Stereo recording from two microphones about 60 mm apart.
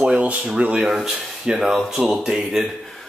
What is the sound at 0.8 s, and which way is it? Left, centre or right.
Speech, centre.